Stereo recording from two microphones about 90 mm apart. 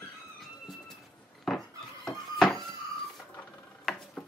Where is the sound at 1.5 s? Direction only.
5° left (ahead or behind).